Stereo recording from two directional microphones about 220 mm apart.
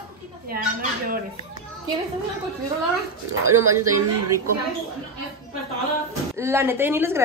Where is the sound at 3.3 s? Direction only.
75° right (ahead or behind).